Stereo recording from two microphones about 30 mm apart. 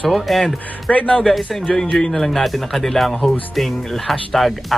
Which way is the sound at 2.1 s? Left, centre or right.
Centre.